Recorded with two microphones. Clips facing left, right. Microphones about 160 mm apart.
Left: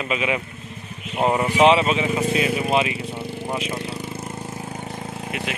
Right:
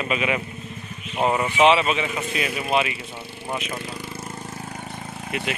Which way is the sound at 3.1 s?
15° left (ahead or behind).